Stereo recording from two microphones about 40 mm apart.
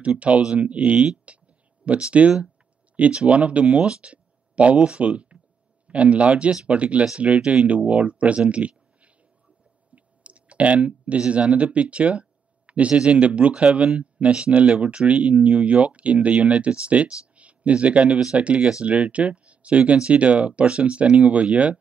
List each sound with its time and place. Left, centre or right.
0.0 s speech: right
3.8 s a sound: right
4.7 s speech: right
6.7 s speech: right
8.5 s a sound: right
9.9 s speech: right